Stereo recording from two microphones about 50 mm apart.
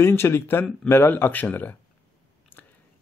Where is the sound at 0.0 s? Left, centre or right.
Left.